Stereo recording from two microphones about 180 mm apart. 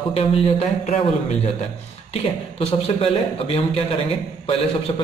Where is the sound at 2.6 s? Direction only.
30° left (ahead or behind).